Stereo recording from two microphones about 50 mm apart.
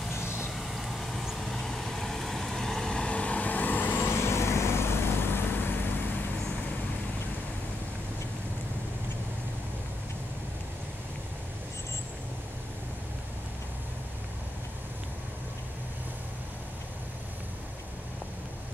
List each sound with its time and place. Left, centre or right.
0.5 s vehicle: centre; by 5.9 s left